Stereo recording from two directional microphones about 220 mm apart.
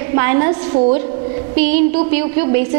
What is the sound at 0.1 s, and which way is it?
Speech, 15° right (ahead or behind).